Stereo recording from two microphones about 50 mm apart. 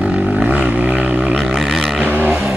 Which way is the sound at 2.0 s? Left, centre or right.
Right.